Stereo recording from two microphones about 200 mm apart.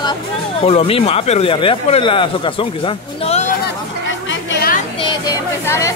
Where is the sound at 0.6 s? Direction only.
30° left (ahead or behind).